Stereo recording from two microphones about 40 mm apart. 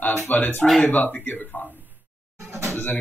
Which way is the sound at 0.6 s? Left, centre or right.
Centre.